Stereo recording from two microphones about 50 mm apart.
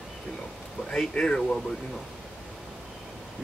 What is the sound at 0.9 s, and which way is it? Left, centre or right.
Speech, centre.